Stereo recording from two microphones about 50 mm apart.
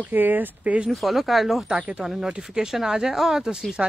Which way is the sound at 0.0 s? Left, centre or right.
Right.